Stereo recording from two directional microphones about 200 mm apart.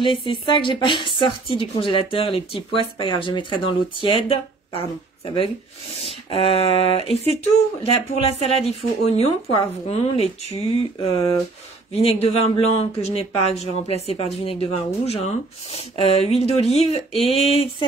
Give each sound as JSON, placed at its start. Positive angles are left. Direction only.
{"t": 0.0, "sound": "speech", "side_deg": 25}
{"t": 11.9, "sound": "speech", "side_deg": 30}